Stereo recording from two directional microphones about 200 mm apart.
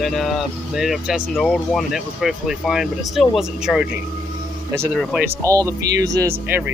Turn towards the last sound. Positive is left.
turn(degrees=-10)  # may be behind; listen again after turning